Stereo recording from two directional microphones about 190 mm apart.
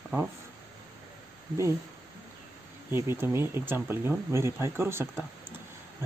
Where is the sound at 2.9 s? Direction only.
10° right (ahead or behind).